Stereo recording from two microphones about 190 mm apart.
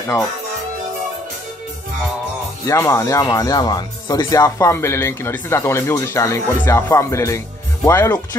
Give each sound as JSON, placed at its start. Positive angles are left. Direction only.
{"t": 2.6, "sound": "speech", "side_deg": 15}